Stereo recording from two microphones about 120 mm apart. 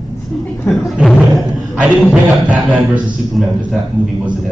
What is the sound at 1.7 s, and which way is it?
A man's voice, 10° right (ahead or behind).